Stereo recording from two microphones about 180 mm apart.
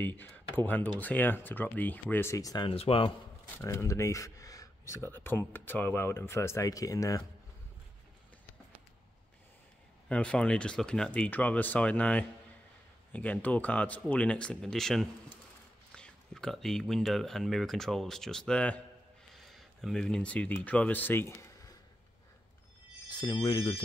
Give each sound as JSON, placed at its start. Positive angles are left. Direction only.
{"t": 0.0, "sound": "speech", "side_deg": 10}
{"t": 3.5, "sound": "speech", "side_deg": 15}
{"t": 10.0, "sound": "speech", "side_deg": 5}
{"t": 23.1, "sound": "speech", "side_deg": 25}